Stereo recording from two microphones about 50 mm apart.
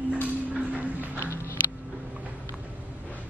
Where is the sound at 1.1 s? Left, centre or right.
Left.